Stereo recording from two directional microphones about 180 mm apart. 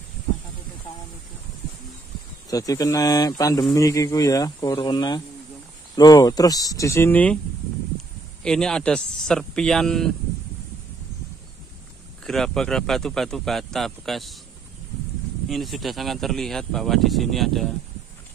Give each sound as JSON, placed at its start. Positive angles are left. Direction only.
{"t": 2.5, "sound": "speech", "side_deg": 20}
{"t": 8.4, "sound": "speech", "side_deg": 5}
{"t": 12.3, "sound": "speech", "side_deg": 0}
{"t": 15.4, "sound": "speech", "side_deg": 0}